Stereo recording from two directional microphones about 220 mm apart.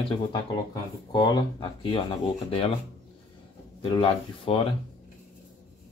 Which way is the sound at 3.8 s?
25° left (ahead or behind).